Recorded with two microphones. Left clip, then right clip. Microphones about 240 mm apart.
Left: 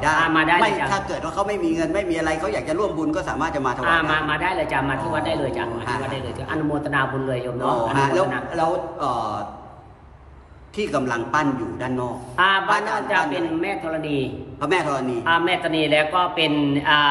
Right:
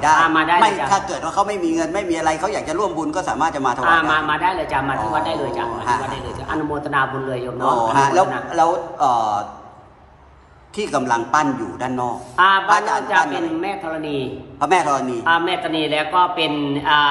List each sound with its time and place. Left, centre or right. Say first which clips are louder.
0.0 s a man's voice: right 4 dB; centre
10.8 s a man's voice: right 4 dB; right
14.6 s a man's voice: right 5 dB; right
15.2 s a man's voice: right 1 dB; centre